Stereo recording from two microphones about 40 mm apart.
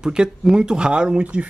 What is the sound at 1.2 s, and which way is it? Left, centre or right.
Speech, right.